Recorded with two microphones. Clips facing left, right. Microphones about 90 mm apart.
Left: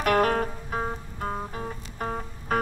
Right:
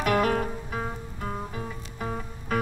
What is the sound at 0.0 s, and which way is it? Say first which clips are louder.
Music: left 1 dB; 50° left (ahead or behind).